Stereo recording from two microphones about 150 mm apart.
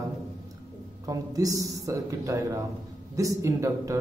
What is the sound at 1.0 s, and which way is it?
A man's voice, 20° right (ahead or behind).